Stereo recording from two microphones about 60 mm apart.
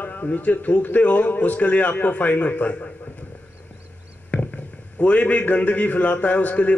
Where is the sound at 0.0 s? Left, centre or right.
Left.